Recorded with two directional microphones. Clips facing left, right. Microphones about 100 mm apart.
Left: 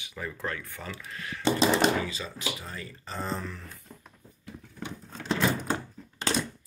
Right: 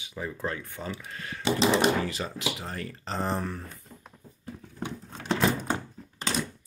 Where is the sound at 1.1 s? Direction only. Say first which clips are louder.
Even; 40° right (ahead or behind).